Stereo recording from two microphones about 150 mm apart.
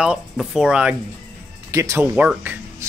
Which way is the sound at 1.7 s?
20° right (ahead or behind).